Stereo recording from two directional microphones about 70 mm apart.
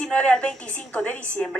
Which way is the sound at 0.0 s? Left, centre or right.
Centre.